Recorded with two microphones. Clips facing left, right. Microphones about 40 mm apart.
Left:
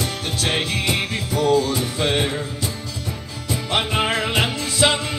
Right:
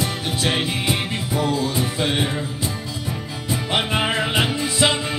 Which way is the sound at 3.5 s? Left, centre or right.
Right.